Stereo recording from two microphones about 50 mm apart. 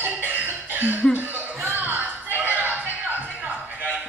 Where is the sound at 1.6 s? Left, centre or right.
Right.